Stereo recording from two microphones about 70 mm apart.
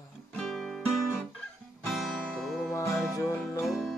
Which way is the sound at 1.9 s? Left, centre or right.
Centre.